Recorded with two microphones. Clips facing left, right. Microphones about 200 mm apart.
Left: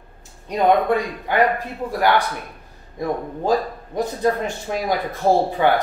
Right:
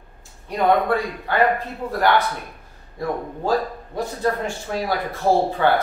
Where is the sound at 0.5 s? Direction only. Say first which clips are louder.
Left 2 dB; 20° left (ahead or behind).